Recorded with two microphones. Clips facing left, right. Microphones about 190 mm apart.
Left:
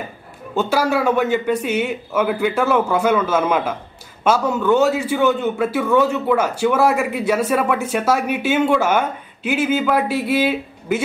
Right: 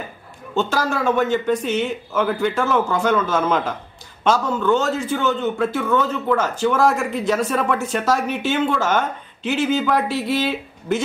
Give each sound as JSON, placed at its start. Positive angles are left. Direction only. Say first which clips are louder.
{"t": 0.7, "sound": "a man's voice", "louder": "left 6 dB", "side_deg": 10}